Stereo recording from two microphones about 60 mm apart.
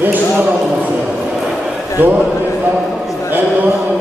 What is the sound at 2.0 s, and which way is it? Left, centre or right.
Speech, right.